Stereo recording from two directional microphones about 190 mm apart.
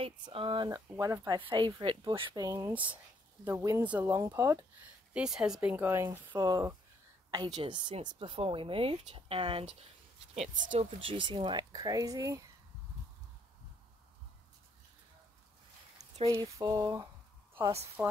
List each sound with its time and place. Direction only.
0.0 s speech: 30° right (ahead or behind)
16.0 s speech: 20° right (ahead or behind)